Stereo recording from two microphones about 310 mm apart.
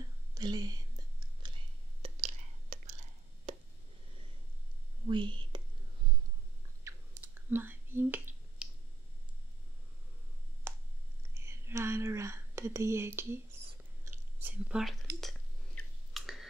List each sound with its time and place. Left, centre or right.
0.3 s whispering: centre
3.5 s a sound: right
5.0 s whispering: centre
6.8 s finger snapping: centre
10.7 s finger snapping: centre
11.3 s whispering: centre
15.1 s a sound: centre